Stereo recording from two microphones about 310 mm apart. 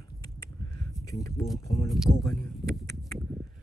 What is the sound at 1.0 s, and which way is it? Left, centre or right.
Speech, left.